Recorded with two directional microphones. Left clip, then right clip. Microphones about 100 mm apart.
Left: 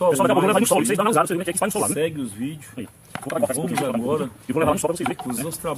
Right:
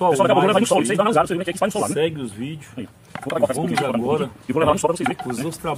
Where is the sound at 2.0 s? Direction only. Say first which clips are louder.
Right 2 dB; 10° right (ahead or behind).